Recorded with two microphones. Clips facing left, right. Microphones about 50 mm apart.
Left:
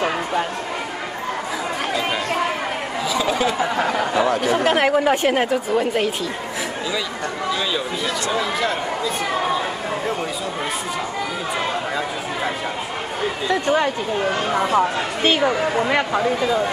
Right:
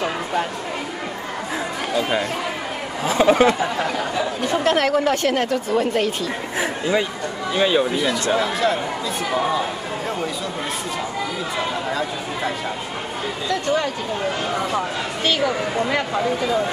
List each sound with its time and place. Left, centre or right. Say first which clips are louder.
3.0 s speech: right 6 dB; right
3.5 s a woman's voice: left 2 dB; centre
7.5 s speech: right 9 dB; right
8.4 s speech: right 2 dB; centre
13.5 s speech: left 2 dB; left